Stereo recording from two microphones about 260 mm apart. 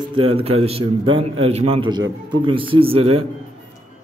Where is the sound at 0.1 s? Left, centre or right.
Right.